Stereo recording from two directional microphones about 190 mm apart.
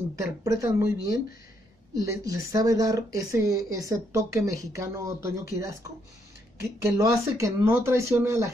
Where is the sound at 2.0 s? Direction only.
20° right (ahead or behind).